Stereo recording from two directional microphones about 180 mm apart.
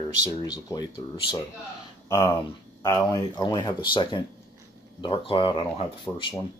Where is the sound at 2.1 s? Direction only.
15° left (ahead or behind).